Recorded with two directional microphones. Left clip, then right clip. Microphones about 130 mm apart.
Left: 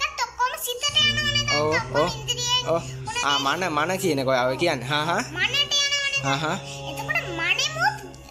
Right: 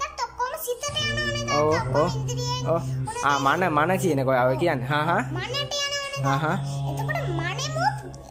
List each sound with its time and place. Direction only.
0.0 s music: 20° right (ahead or behind)
1.8 s a child's voice: 5° left (ahead or behind)
2.0 s music: 25° right (ahead or behind)
2.6 s a sound: centre (ahead or behind)
3.4 s speech: centre (ahead or behind)
5.4 s a sound: 25° right (ahead or behind)
6.2 s speech: centre (ahead or behind)
7.1 s music: 25° right (ahead or behind)